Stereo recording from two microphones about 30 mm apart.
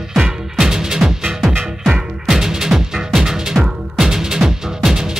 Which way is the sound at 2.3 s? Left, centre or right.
Centre.